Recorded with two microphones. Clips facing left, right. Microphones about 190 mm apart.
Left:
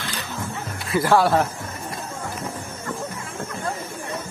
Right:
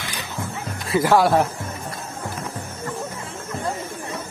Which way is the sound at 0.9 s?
15° right (ahead or behind).